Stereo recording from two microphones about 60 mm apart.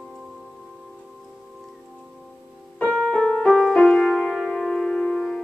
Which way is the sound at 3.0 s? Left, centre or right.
Centre.